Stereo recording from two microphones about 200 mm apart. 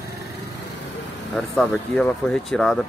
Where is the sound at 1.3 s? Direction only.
5° left (ahead or behind).